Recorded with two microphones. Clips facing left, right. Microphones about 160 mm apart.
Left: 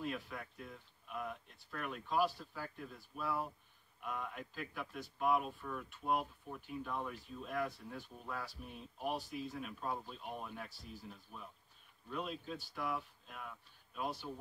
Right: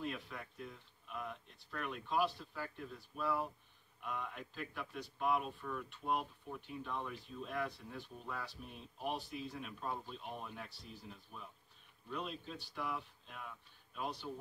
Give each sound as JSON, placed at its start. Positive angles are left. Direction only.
{"t": 0.0, "sound": "speech", "side_deg": 0}
{"t": 10.7, "sound": "speech", "side_deg": 45}
{"t": 11.3, "sound": "speech", "side_deg": 0}